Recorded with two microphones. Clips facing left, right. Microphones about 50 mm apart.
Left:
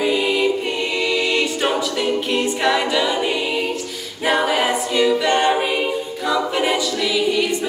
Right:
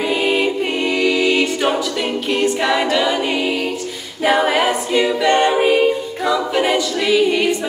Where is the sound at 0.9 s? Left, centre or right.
Centre.